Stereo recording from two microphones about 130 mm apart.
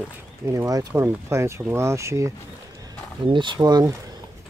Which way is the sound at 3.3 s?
40° right (ahead or behind).